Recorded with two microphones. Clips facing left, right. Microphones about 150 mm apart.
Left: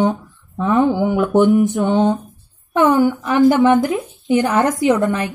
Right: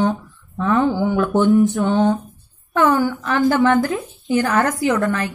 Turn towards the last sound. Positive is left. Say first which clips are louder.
# left 3 dB
turn(degrees=20)  # may be behind; listen again after turning